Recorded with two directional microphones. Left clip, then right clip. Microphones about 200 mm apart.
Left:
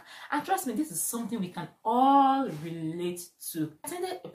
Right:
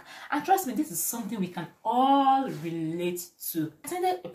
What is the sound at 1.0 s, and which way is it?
Speech, 15° left (ahead or behind).